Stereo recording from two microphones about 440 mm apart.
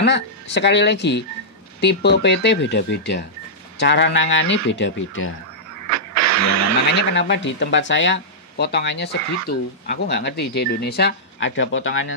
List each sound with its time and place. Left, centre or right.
0.0 s speech: left
5.9 s music: right
7.0 s speech: left